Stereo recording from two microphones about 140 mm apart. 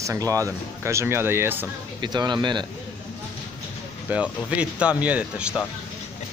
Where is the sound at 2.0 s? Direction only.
30° right (ahead or behind).